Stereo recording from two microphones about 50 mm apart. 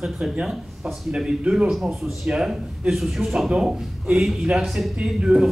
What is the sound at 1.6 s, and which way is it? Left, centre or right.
Speech, centre.